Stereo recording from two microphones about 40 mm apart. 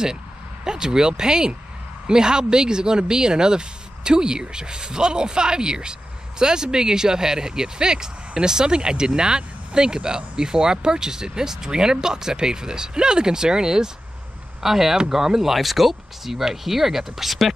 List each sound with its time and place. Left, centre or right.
0.7 s speech: centre